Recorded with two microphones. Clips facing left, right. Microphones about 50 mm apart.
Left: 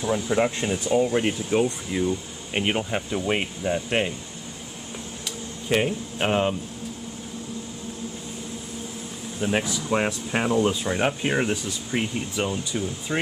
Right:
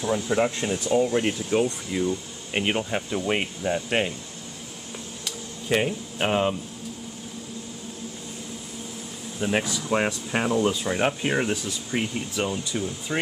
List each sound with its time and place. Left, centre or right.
0.0 s speech: centre
5.2 s a sound: centre
9.4 s speech: centre
10.9 s speech: centre